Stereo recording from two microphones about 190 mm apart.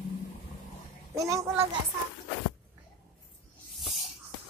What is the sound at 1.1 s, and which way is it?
Child singing, 15° right (ahead or behind).